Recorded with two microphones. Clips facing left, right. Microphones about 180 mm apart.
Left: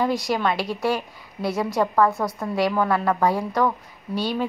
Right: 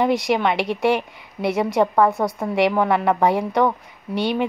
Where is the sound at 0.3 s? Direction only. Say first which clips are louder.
Right 3 dB; 20° right (ahead or behind).